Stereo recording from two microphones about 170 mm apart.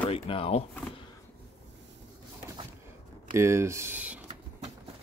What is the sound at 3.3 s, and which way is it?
Speech, 15° right (ahead or behind).